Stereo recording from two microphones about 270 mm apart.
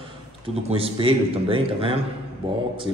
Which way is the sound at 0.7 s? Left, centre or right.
Right.